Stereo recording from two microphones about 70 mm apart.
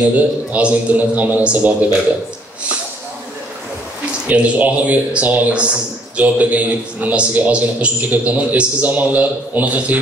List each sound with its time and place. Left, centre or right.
0.2 s speech: centre
4.3 s speech: centre